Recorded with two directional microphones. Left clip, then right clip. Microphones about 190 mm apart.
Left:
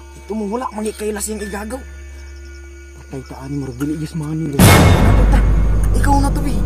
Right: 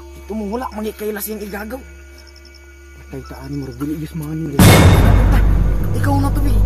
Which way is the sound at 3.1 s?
25° left (ahead or behind).